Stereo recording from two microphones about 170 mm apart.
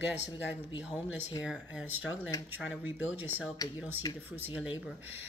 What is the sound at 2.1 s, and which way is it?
Speech, 15° left (ahead or behind).